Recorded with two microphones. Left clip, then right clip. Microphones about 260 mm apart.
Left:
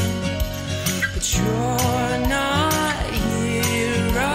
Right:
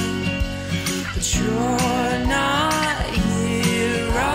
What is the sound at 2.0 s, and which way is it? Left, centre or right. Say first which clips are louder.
Music: right 1 dB; centre.